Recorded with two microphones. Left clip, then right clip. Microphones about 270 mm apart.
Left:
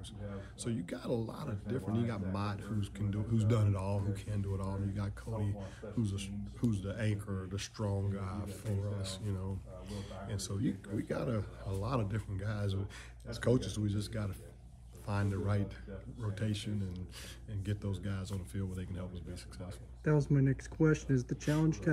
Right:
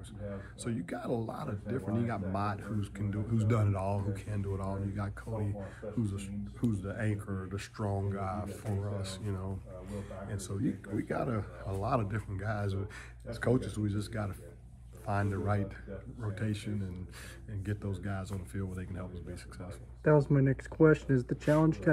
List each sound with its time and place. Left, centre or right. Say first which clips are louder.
0.7 s speech: right 2 dB; centre